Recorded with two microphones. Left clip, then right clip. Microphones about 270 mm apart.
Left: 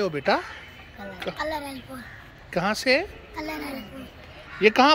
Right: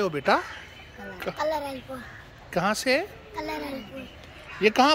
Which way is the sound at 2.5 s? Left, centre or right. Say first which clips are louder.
Left 2 dB; centre.